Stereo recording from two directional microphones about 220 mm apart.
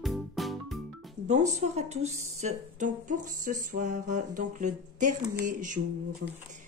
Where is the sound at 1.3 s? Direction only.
30° right (ahead or behind).